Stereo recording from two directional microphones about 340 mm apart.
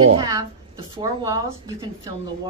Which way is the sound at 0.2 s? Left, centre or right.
Centre.